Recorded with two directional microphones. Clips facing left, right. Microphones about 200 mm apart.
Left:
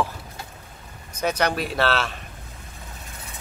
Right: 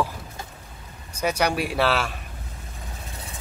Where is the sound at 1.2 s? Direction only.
10° right (ahead or behind).